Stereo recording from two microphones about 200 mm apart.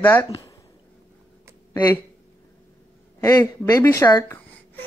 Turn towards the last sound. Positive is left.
turn(degrees=15)  # may be behind; listen again after turning